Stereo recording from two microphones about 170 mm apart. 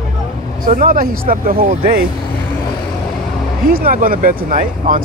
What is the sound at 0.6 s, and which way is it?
Speech, 55° right (ahead or behind).